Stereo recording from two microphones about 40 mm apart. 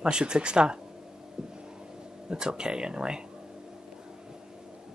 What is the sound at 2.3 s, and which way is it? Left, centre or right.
Speech, centre.